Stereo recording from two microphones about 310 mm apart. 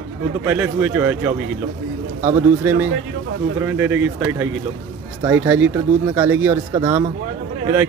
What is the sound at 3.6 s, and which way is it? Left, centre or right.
Speech, centre.